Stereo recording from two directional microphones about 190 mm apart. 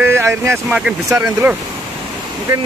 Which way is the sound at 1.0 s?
15° right (ahead or behind).